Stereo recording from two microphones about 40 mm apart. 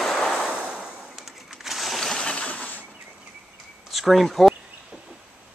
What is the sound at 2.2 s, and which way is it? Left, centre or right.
Sewing machine, left.